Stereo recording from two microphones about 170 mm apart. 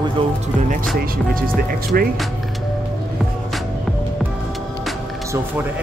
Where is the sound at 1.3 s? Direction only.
60° right (ahead or behind).